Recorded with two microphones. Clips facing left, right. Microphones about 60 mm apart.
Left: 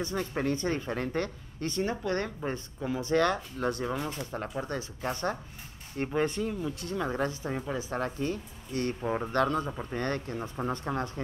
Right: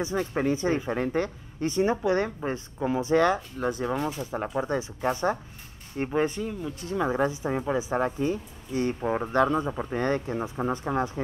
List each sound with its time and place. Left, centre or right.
0.2 s speech: centre
3.3 s speech: centre